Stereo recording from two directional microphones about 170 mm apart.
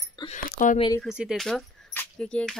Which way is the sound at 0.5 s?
50° left (ahead or behind).